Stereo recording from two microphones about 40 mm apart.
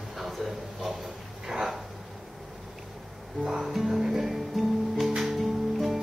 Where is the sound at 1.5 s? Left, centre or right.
Centre.